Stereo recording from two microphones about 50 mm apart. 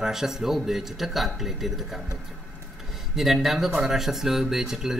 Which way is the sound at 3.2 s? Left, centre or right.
Centre.